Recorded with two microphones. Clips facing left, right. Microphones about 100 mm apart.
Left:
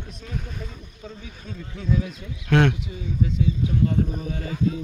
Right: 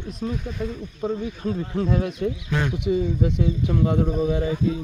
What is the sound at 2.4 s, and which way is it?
Speech, 75° left (ahead or behind).